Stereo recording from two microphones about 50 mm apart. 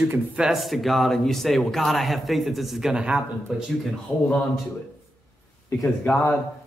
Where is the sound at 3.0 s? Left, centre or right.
Right.